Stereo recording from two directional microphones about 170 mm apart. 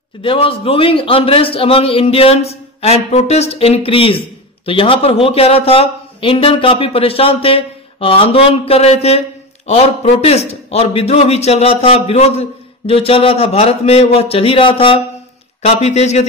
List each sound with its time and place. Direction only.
0.2 s a man's voice: 30° left (ahead or behind)